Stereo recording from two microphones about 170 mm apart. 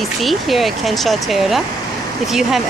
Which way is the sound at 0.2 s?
Centre (ahead or behind).